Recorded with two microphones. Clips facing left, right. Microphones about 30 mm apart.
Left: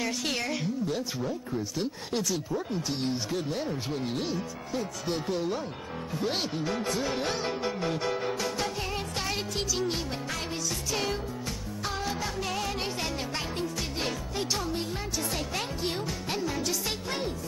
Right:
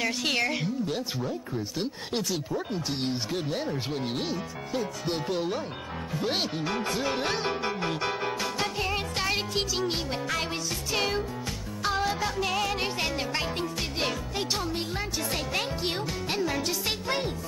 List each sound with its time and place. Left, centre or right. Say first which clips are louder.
0.0 s speech: right 4 dB; right
7.4 s music: right 1 dB; right
15.8 s speech: right 1 dB; right
16.3 s music: right 2 dB; right